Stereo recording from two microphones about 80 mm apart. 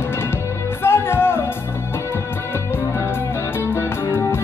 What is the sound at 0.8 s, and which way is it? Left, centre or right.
Music, left.